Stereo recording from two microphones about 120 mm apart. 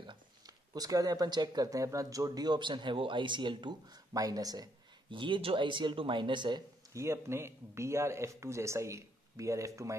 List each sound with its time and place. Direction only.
0.7 s speech: 30° right (ahead or behind)
5.1 s speech: 45° right (ahead or behind)
6.9 s a man's voice: 25° right (ahead or behind)